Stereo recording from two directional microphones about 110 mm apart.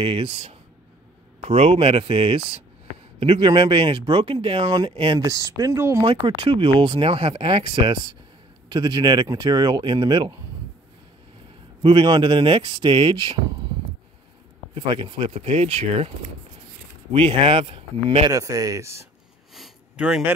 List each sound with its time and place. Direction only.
0.0 s speech: 60° right (ahead or behind)
5.2 s speech: 30° right (ahead or behind)
6.0 s speech: 50° right (ahead or behind)
11.8 s speech: 50° right (ahead or behind)
14.7 s speech: 50° right (ahead or behind); by 16.1 s 75° right (ahead or behind)
17.1 s speech: 55° right (ahead or behind)
18.3 s speech: 30° right (ahead or behind)
20.0 s speech: 10° right (ahead or behind)